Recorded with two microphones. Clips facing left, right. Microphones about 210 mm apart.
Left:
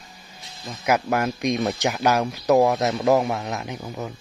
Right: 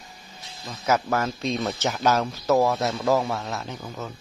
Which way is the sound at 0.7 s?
15° left (ahead or behind).